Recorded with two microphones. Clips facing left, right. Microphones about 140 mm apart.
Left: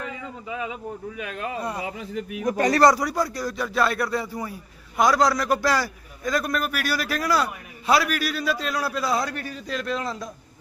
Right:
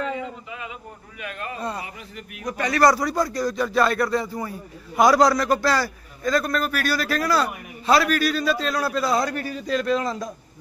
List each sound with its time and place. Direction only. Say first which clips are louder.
1.6 s a man's voice: right 2 dB; 15° left (ahead or behind)
2.4 s speech: left 4 dB; 40° left (ahead or behind)
2.8 s a man's voice: right 2 dB; 15° left (ahead or behind)
4.9 s a man's voice: right 3 dB; 5° right (ahead or behind)